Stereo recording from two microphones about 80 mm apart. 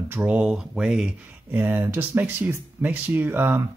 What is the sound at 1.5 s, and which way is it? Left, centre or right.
Speech, right.